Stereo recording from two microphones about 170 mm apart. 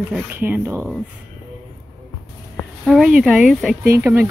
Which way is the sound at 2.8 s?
5° right (ahead or behind).